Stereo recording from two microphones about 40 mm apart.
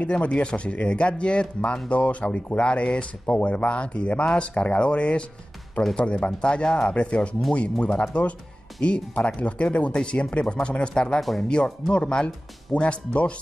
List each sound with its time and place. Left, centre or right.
0.0 s speech: left
11.1 s speech: centre
11.4 s speech: centre